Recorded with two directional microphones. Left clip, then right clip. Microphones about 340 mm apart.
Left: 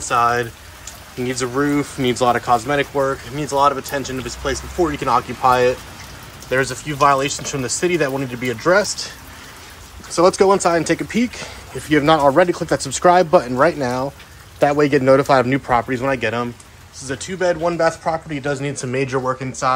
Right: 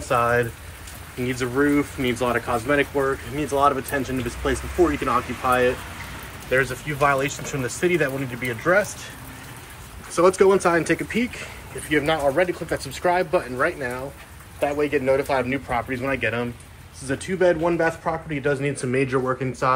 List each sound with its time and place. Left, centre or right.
0.1 s speech: centre
10.1 s speech: centre
12.0 s speech: centre
12.4 s a man's voice: left
12.7 s speech: centre
13.7 s a man's voice: left
15.0 s speech: left
17.0 s speech: centre